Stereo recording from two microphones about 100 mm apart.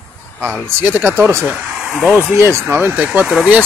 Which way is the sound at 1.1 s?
25° right (ahead or behind).